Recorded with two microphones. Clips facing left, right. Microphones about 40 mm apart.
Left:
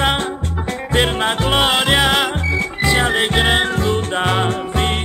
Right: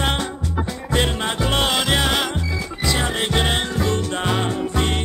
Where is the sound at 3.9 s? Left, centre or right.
Left.